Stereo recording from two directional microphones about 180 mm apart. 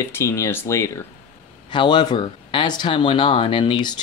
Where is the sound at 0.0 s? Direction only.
15° left (ahead or behind).